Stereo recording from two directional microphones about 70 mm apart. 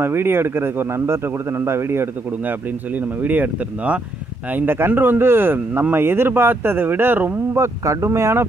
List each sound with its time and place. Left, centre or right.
0.0 s speech: right
3.2 s speech: right
7.6 s speech: right